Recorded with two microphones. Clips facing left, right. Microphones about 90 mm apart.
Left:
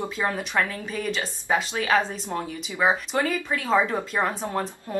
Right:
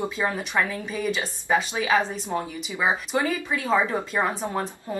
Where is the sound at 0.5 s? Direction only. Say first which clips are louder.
Even; 10° right (ahead or behind).